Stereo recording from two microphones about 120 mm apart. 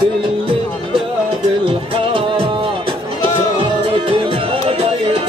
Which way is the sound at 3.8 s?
45° right (ahead or behind).